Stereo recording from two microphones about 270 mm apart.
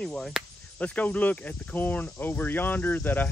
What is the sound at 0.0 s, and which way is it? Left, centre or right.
Speech, centre.